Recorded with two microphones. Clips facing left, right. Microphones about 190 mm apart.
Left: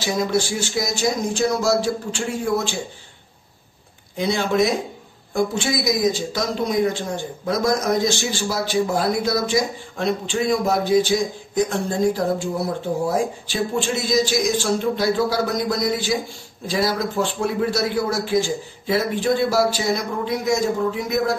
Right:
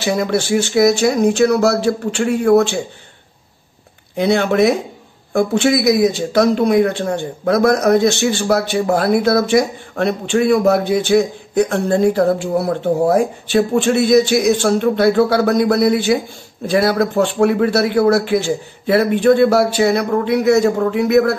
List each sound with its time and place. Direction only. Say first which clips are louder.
0.0 s a man's voice: right 4 dB; 60° right (ahead or behind)
4.2 s a man's voice: right 6 dB; 60° right (ahead or behind)